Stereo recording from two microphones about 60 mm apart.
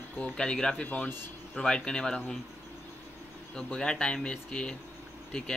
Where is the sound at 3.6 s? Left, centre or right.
Centre.